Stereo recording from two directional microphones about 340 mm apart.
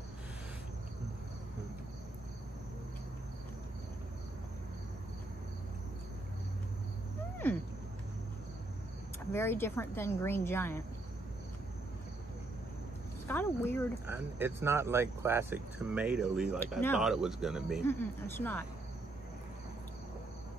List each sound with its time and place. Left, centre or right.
7.4 s a sound: centre
9.3 s a woman's voice: centre
13.3 s speech: centre
14.0 s speech: centre